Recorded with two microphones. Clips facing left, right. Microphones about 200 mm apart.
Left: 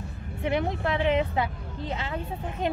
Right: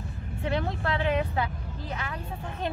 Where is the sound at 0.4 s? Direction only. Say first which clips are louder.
Left 3 dB; 15° left (ahead or behind).